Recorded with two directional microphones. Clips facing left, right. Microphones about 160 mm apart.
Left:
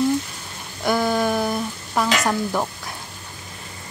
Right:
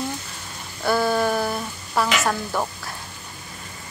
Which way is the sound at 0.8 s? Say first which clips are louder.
Even; 15° left (ahead or behind).